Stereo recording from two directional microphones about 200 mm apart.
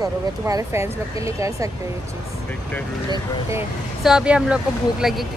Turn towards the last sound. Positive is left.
turn(degrees=0)  # may be behind; listen again after turning